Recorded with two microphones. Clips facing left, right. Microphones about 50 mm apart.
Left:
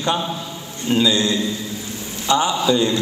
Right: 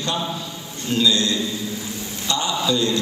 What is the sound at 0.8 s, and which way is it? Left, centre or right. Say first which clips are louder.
A man's voice: left 2 dB; left.